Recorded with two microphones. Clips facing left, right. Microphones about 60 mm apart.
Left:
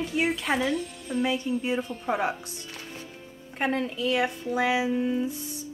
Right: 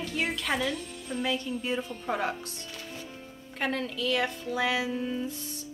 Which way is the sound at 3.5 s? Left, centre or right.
Left.